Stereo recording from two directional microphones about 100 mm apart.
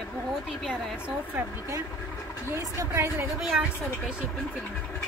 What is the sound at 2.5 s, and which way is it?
Speech, 25° right (ahead or behind).